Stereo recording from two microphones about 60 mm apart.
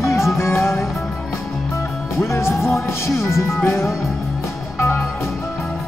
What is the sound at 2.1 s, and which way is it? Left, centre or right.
Music, left.